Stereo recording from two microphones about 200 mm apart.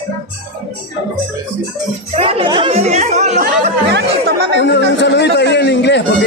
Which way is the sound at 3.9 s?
55° right (ahead or behind).